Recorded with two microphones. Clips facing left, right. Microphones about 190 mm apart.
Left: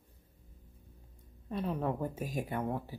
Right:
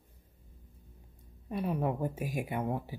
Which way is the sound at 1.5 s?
10° right (ahead or behind).